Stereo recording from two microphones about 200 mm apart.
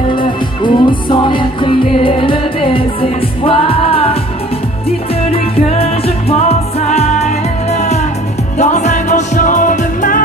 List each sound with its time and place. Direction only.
0.1 s music: 25° left (ahead or behind); by 10.2 s 40° left (ahead or behind)